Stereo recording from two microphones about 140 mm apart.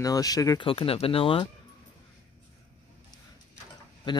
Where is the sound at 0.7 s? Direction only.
40° left (ahead or behind).